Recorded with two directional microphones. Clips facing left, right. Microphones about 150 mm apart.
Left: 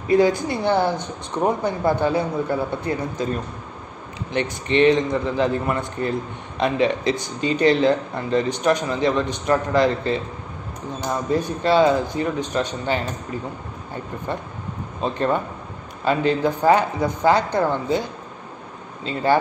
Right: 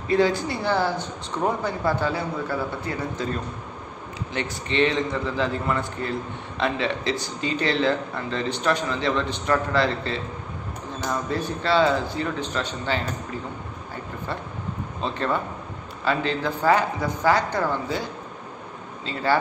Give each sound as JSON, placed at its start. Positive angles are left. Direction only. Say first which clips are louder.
{"t": 0.1, "sound": "speech", "louder": "left 4 dB", "side_deg": 15}
{"t": 4.3, "sound": "speech", "louder": "left 7 dB", "side_deg": 20}
{"t": 15.0, "sound": "speech", "louder": "left 4 dB", "side_deg": 15}